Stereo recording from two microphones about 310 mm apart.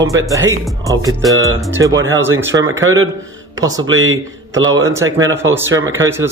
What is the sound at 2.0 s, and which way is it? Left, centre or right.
Speech, right.